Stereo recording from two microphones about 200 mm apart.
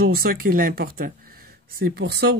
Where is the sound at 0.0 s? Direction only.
50° right (ahead or behind).